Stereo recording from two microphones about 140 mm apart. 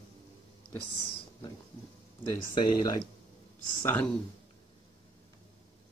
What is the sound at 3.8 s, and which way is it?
Speech, 15° left (ahead or behind).